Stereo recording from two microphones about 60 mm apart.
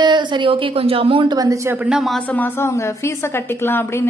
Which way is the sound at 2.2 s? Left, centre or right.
Left.